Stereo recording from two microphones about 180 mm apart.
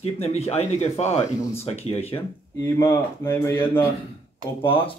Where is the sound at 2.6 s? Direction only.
15° left (ahead or behind).